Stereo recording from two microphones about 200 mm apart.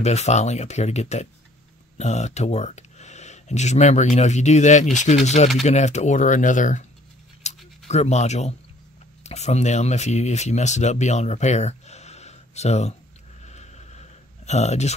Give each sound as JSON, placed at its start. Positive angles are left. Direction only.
{"t": 0.0, "sound": "speech", "side_deg": 35}
{"t": 7.4, "sound": "scratch", "side_deg": 35}
{"t": 9.2, "sound": "speech", "side_deg": 35}
{"t": 13.4, "sound": "a sound", "side_deg": 35}